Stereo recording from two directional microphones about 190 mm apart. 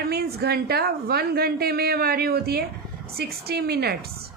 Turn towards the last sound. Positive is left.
turn(degrees=-55)  # may be behind; listen again after turning